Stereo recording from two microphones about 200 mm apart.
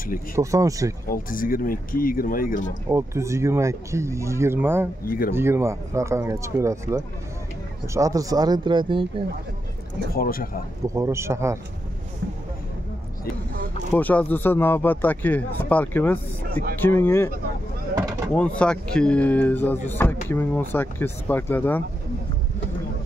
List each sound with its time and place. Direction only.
0.4 s speech: 15° right (ahead or behind)
1.0 s speech: 45° left (ahead or behind)
2.9 s speech: 15° right (ahead or behind)
5.0 s speech: 45° left (ahead or behind)
5.3 s speech: 10° right (ahead or behind)
10.1 s speech: 45° left (ahead or behind)
11.0 s speech: 15° right (ahead or behind)
13.9 s speech: 10° left (ahead or behind)
18.3 s speech: 5° left (ahead or behind)